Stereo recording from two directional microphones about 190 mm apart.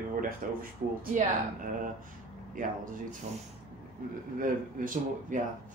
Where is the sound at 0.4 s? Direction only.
45° right (ahead or behind).